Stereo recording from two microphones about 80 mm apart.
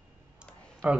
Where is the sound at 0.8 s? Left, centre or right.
Centre.